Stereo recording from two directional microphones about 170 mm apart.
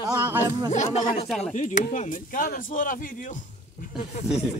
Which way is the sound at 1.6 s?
45° left (ahead or behind).